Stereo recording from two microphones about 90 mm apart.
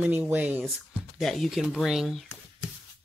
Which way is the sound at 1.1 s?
5° left (ahead or behind).